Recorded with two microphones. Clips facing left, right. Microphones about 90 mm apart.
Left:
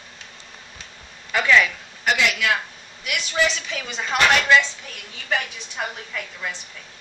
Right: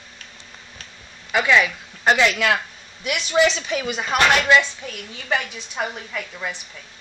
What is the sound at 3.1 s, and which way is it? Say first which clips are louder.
Speech: right 5 dB; 20° right (ahead or behind).